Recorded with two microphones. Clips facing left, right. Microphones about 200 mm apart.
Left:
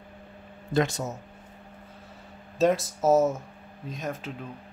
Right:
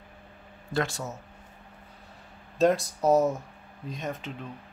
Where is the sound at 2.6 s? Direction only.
Centre (ahead or behind).